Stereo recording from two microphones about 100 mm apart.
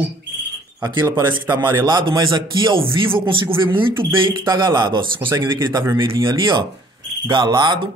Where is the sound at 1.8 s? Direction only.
50° right (ahead or behind).